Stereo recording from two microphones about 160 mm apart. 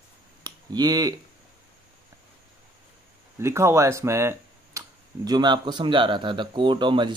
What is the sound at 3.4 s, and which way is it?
Speech, 15° right (ahead or behind).